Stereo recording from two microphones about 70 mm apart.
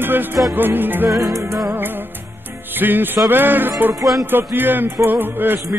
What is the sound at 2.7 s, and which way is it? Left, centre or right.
Music, right.